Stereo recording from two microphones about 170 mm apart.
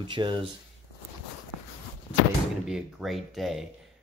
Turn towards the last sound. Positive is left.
turn(degrees=0)  # may be behind; listen again after turning